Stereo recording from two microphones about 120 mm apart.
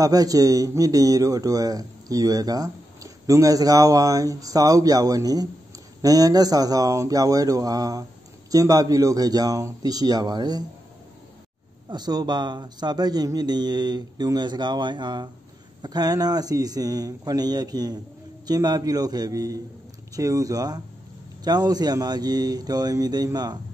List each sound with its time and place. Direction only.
0.0 s speech: 30° right (ahead or behind)
11.9 s speech: 35° right (ahead or behind)